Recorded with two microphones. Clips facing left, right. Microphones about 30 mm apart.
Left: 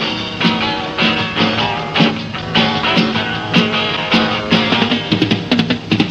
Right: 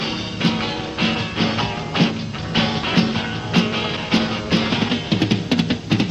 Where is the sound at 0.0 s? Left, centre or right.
Left.